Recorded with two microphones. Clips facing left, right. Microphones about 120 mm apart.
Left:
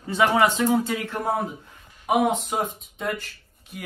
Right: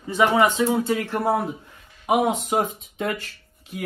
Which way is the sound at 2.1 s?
35° right (ahead or behind).